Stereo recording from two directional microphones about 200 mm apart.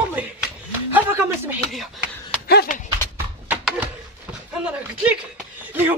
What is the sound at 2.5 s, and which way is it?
Clip-clop, 45° left (ahead or behind).